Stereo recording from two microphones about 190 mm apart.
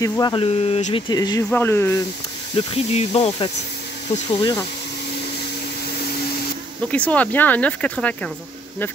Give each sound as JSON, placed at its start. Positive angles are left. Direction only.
{"t": 0.0, "sound": "speech", "side_deg": 20}
{"t": 1.0, "sound": "speech", "side_deg": 20}
{"t": 2.5, "sound": "speech", "side_deg": 30}
{"t": 6.9, "sound": "speech", "side_deg": 5}